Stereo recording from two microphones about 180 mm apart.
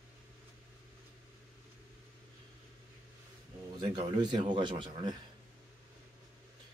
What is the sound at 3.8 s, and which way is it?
Speech, 25° right (ahead or behind).